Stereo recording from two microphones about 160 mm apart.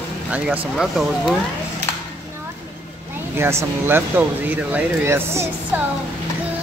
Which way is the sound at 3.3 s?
15° right (ahead or behind).